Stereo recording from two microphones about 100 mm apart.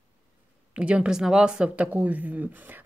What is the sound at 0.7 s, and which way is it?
Speech, 10° right (ahead or behind).